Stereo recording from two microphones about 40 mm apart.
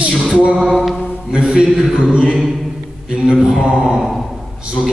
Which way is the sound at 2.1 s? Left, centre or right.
Centre.